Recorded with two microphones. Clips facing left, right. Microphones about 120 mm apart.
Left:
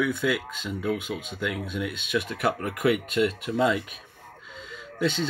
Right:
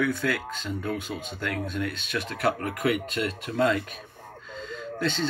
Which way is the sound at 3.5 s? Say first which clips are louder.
Right 4 dB; 10° left (ahead or behind).